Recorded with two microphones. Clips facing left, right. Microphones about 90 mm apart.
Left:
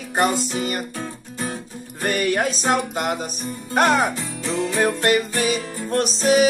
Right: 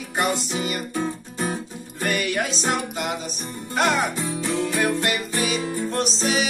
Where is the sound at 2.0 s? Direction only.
40° left (ahead or behind).